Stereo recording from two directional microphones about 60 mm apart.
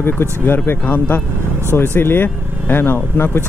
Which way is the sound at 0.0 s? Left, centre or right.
Left.